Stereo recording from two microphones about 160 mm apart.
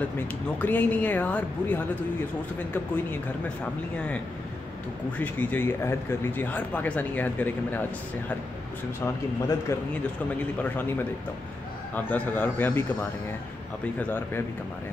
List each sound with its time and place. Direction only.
0.6 s speech: 10° left (ahead or behind)
5.2 s speech: 10° left (ahead or behind)
9.0 s speech: 20° left (ahead or behind)
11.9 s speech: 10° left (ahead or behind)